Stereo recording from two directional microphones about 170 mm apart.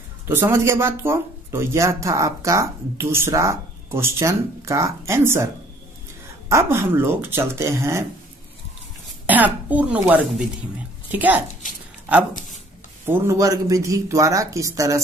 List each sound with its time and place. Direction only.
0.3 s speech: 15° right (ahead or behind)
6.5 s speech: 15° right (ahead or behind)
9.2 s a man's voice: 10° right (ahead or behind)